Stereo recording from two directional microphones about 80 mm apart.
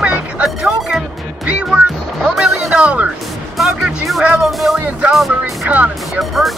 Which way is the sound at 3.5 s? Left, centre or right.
Centre.